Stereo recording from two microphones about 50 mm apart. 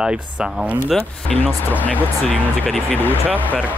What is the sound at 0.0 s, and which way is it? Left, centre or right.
Speech, centre.